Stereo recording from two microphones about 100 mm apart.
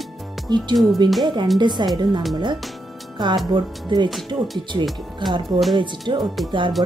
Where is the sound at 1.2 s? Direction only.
50° right (ahead or behind).